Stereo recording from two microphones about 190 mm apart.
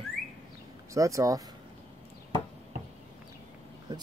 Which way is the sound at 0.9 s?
15° right (ahead or behind).